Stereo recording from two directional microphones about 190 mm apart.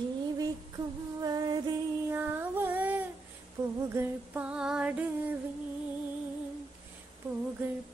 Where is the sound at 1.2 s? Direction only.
20° right (ahead or behind).